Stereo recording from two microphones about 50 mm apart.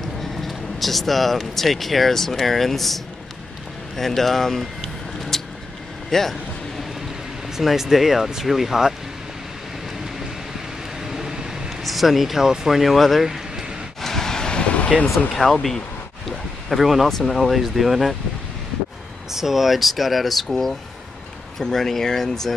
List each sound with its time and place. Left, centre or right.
0.0 s speech: centre
5.3 s vehicle: centre
6.0 s speech: centre
7.5 s speech: centre
11.0 s vehicle: centre
11.8 s speech: centre
14.0 s vehicle: centre; by 15.0 s left
15.3 s speech: centre
16.3 s a sound: centre
17.1 s speech: centre
19.3 s speech: centre